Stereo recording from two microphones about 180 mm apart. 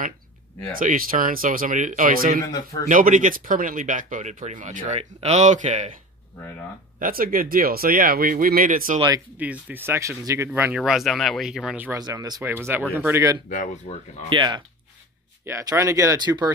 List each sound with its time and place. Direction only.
0.7 s speech: 50° right (ahead or behind)
2.4 s speech: 20° left (ahead or behind)
2.9 s speech: 50° right (ahead or behind)
7.0 s speech: 55° right (ahead or behind)
9.4 s speech: 10° right (ahead or behind)
10.8 s speech: centre (ahead or behind)
12.0 s speech: 20° right (ahead or behind)
13.5 s speech: 45° left (ahead or behind)
14.3 s speech: 25° right (ahead or behind)